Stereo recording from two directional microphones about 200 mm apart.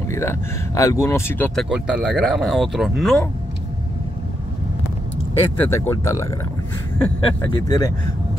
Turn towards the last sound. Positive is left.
turn(degrees=20)  # may be behind; listen again after turning